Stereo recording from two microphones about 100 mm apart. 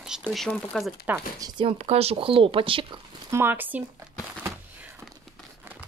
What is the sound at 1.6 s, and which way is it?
Speech, 80° right.